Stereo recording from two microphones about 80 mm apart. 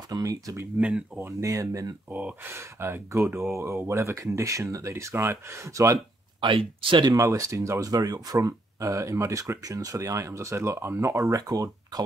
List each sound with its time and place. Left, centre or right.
0.1 s speech: right
0.7 s speech: centre
1.4 s speech: right
2.0 s speech: centre
2.5 s speech: right
6.4 s speech: right
6.8 s speech: right
7.2 s speech: right